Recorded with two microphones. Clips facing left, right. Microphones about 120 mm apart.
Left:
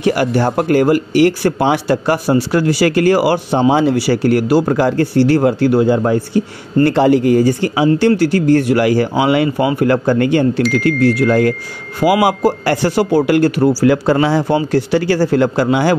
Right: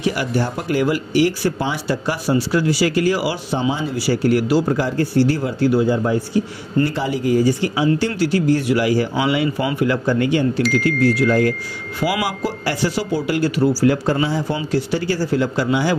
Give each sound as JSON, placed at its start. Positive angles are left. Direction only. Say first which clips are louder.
{"t": 0.0, "sound": "speech", "louder": "left 6 dB", "side_deg": 60}
{"t": 10.6, "sound": "speech", "louder": "left 4 dB", "side_deg": 0}
{"t": 11.0, "sound": "speech", "louder": "left 3 dB", "side_deg": 70}
{"t": 12.0, "sound": "speech", "louder": "left 9 dB", "side_deg": 50}
{"t": 14.7, "sound": "speech", "louder": "left 6 dB", "side_deg": 65}